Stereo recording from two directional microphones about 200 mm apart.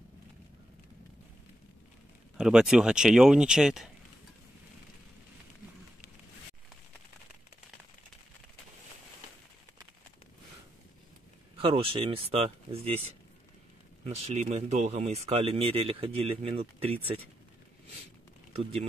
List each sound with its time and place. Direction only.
2.3 s speech: 5° right (ahead or behind)
11.6 s speech: 25° right (ahead or behind)
14.0 s speech: 35° right (ahead or behind)